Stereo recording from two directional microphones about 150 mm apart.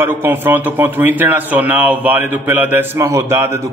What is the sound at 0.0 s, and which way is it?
Speech, 15° right (ahead or behind).